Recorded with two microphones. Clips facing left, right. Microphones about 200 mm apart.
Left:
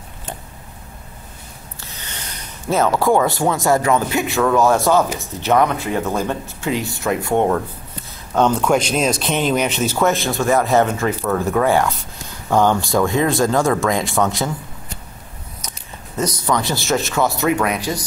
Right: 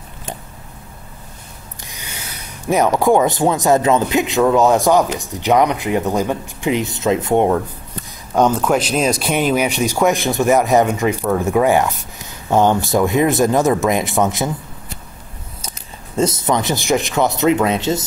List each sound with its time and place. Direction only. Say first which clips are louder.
1.8 s speech: right 1 dB; 15° right (ahead or behind)
16.2 s speech: right 3 dB; 25° right (ahead or behind)